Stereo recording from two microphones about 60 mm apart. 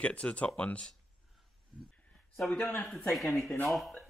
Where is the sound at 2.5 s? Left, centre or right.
Left.